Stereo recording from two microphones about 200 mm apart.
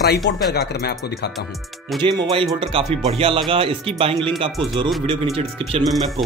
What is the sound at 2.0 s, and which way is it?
Speech, 20° right (ahead or behind).